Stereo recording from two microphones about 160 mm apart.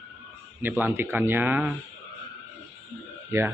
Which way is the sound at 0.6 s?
10° right (ahead or behind).